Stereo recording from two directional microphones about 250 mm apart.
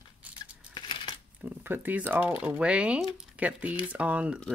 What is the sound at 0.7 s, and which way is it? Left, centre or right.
Coin, centre.